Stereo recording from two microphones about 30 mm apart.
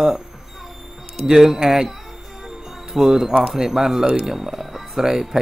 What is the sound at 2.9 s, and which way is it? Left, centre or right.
Speech, centre.